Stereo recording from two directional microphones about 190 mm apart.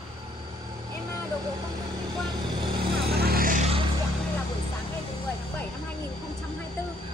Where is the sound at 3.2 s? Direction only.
50° right (ahead or behind).